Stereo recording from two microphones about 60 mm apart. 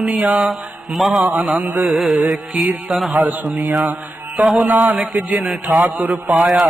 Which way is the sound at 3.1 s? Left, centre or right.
Right.